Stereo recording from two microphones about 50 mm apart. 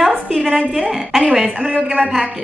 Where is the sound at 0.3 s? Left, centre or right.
Right.